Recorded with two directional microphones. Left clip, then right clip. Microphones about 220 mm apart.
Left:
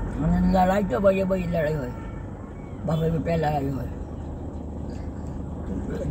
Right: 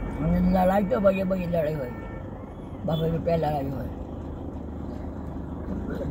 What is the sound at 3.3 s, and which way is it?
Speech, 45° left (ahead or behind).